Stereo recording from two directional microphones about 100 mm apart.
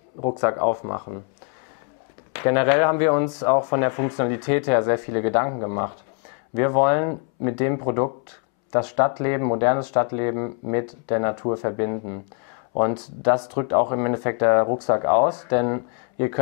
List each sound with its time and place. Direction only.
0.2 s speech: 20° left (ahead or behind)
2.3 s speech: 15° left (ahead or behind)